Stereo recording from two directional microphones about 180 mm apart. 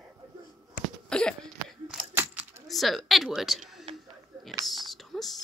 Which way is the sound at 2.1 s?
10° right (ahead or behind).